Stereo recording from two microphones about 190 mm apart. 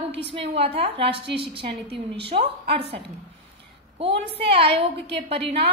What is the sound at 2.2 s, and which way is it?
Speech, 30° right (ahead or behind).